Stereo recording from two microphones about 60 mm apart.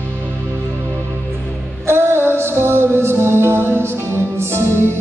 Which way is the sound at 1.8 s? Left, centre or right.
Right.